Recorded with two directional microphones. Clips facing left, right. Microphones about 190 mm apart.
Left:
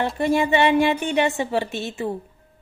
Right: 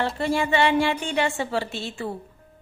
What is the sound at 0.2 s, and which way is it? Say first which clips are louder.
A woman's voice: left 4 dB; 15° left (ahead or behind).